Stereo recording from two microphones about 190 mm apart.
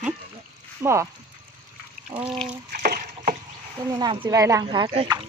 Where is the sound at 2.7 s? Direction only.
50° right (ahead or behind).